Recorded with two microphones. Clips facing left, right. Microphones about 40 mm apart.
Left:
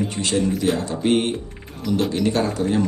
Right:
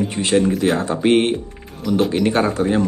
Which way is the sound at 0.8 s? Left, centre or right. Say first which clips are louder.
Right 4 dB; right.